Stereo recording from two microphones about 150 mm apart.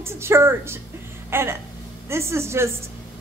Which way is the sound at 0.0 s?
15° right (ahead or behind).